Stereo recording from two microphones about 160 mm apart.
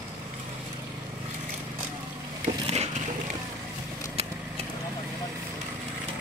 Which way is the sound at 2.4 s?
40° right (ahead or behind).